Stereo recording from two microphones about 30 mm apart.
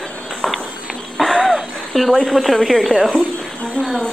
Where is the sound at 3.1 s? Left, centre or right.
Left.